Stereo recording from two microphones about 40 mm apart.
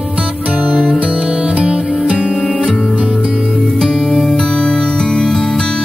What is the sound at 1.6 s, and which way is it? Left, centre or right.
Music, right.